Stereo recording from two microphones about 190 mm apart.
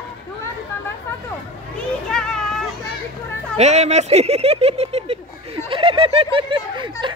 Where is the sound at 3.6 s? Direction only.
35° right (ahead or behind).